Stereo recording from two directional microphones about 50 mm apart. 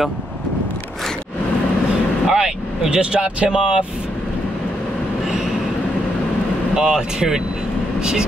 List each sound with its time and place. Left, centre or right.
2.2 s speech: centre
6.7 s speech: centre